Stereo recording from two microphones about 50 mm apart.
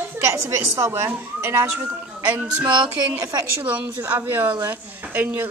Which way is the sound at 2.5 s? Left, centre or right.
Right.